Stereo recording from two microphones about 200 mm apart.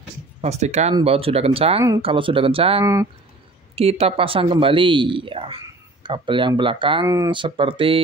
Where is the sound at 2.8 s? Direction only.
15° right (ahead or behind).